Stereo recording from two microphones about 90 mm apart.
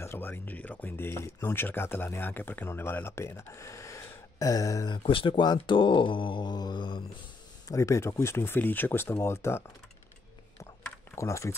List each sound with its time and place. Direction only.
0.0 s speech: 25° left (ahead or behind)
4.8 s speech: 70° left (ahead or behind)
7.6 s speech: 35° left (ahead or behind)
11.1 s speech: 35° left (ahead or behind)